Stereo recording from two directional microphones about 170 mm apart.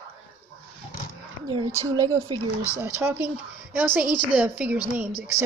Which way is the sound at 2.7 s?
10° right (ahead or behind).